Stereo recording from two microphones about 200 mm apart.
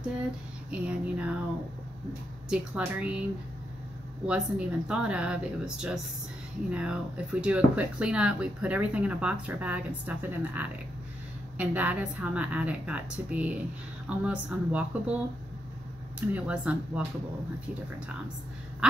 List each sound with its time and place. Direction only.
0.7 s speech: 5° right (ahead or behind)
2.5 s speech: 5° right (ahead or behind)
4.3 s speech: 5° right (ahead or behind)
16.2 s speech: 5° right (ahead or behind)